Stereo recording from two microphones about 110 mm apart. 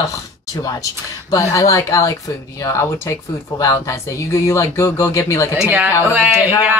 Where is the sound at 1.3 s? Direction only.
30° left (ahead or behind).